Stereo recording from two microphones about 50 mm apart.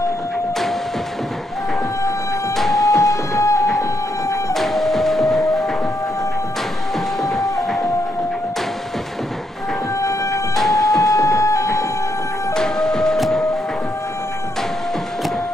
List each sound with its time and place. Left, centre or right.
2.5 s music: centre
3.3 s music: left
4.6 s music: centre
7.2 s music: centre
10.5 s music: centre
11.1 s printer: left
12.5 s music: centre